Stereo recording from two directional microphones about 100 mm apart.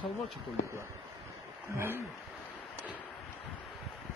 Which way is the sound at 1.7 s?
20° right (ahead or behind).